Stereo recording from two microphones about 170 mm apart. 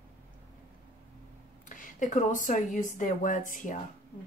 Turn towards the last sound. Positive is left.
turn(degrees=50)  # may be behind; listen again after turning